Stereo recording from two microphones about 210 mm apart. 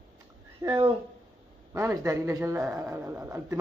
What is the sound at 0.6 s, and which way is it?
Speech, 20° right (ahead or behind).